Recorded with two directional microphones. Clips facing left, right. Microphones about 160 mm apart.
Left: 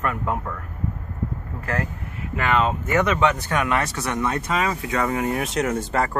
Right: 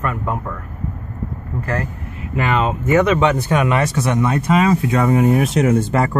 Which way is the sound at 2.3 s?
10° right (ahead or behind).